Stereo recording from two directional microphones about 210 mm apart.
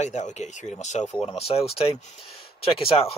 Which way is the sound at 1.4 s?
30° left (ahead or behind).